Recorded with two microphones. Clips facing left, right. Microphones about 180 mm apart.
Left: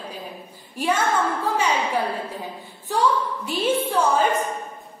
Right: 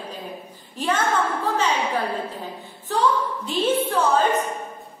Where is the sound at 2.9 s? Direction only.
10° left (ahead or behind).